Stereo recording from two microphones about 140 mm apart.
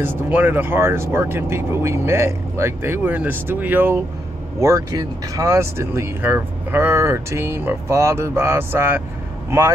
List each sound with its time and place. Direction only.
0.0 s speech: 15° right (ahead or behind)